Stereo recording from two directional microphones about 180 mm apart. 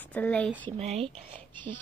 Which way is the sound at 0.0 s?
10° left (ahead or behind).